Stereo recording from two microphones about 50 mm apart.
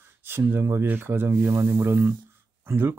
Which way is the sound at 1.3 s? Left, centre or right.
Right.